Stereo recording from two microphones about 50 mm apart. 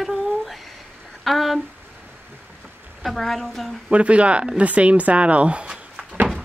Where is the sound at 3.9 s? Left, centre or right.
Right.